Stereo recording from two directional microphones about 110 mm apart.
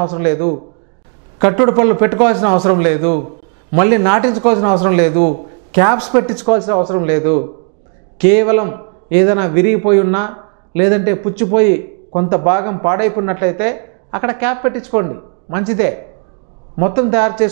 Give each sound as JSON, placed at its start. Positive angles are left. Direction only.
{"t": 0.0, "sound": "a man's voice", "side_deg": -15}